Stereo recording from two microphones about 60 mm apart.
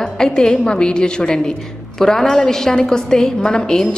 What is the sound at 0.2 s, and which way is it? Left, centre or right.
A woman's voice, centre.